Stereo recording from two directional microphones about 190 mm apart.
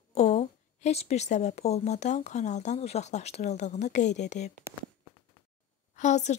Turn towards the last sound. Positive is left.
turn(degrees=40)  # may be behind; listen again after turning